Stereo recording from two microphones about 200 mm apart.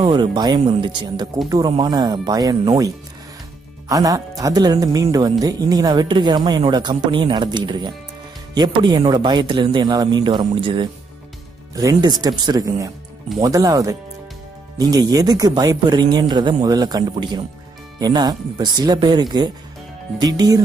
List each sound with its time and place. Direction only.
0.0 s speech: 25° right (ahead or behind)
3.9 s speech: 15° right (ahead or behind)